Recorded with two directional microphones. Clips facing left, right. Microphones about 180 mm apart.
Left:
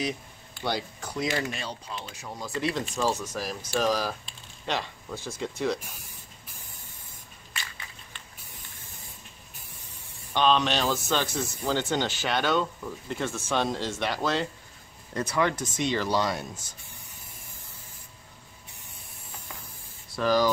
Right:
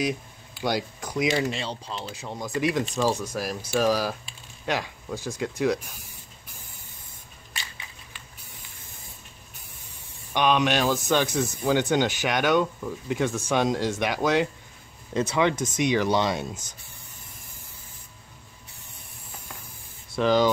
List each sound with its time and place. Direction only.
0.6 s speech: 10° right (ahead or behind)
10.3 s speech: 15° right (ahead or behind)
20.2 s speech: 20° right (ahead or behind)